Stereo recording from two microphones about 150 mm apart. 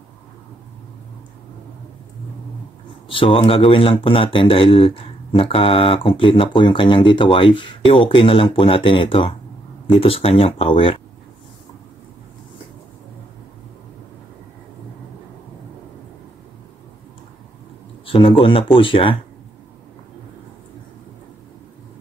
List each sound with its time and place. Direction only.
3.1 s speech: 35° left (ahead or behind)
18.0 s speech: 35° left (ahead or behind)